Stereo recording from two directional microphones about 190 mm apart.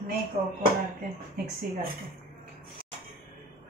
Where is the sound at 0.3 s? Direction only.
40° right (ahead or behind).